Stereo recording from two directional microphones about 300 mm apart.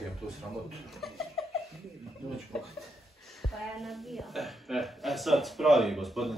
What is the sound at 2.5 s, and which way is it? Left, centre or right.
Speech, centre.